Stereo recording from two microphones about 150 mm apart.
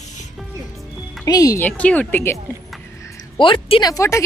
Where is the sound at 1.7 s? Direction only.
10° left (ahead or behind).